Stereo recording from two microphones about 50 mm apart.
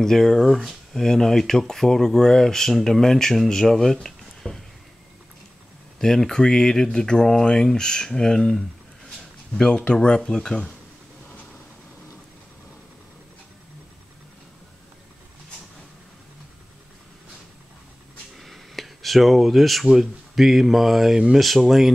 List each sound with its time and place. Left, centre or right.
0.0 s speech: centre
5.9 s speech: centre
18.3 s a sound: centre
19.9 s speech: centre